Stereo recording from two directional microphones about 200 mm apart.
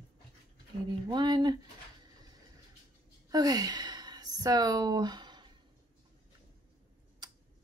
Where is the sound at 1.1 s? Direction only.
20° right (ahead or behind).